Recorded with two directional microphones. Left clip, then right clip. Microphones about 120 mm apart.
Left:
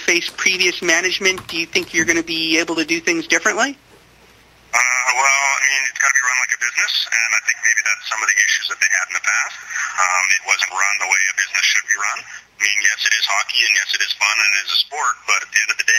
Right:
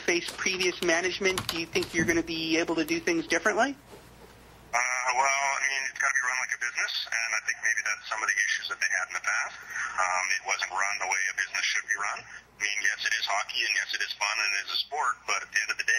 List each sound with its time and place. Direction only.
0.0 s speech: 20° left (ahead or behind)
4.7 s speech: 20° left (ahead or behind)